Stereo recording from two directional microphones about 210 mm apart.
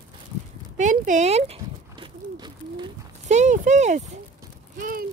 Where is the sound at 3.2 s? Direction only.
35° right (ahead or behind).